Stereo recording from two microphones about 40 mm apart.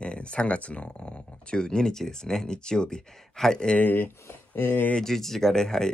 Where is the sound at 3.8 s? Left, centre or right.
Left.